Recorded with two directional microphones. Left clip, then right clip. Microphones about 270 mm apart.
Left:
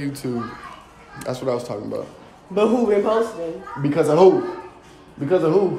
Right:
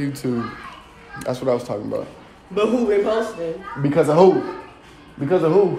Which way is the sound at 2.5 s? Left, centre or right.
Left.